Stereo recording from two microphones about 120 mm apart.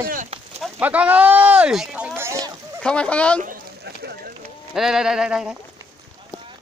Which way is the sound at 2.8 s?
10° left (ahead or behind).